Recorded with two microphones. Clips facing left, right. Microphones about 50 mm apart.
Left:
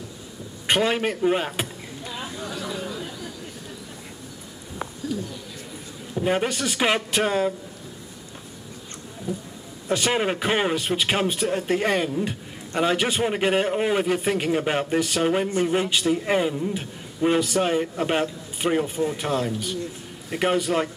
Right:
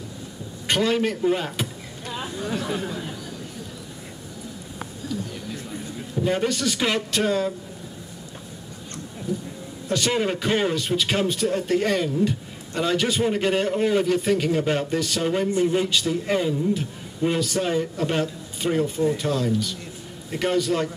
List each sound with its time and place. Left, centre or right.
0.7 s a man's voice: left
2.5 s chatter: right
6.2 s a man's voice: left
9.3 s a man's voice: centre